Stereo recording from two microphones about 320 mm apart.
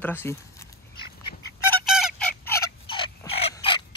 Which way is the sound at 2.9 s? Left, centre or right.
Centre.